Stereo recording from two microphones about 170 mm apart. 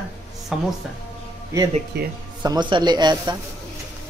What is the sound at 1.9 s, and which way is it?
Speech, 75° right (ahead or behind).